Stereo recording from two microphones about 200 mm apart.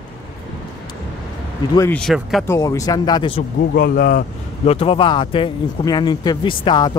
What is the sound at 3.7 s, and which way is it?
Speech, 50° left (ahead or behind).